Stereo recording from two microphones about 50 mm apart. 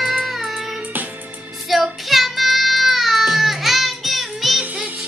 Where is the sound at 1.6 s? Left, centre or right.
Centre.